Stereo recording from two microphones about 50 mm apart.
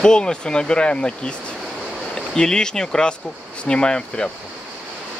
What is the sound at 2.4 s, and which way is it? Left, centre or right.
Speech, centre.